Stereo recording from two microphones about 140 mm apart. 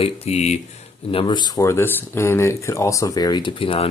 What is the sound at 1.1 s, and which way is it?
Speech, 40° left (ahead or behind).